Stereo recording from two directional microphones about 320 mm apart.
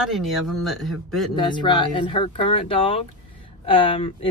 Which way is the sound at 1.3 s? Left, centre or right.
Centre.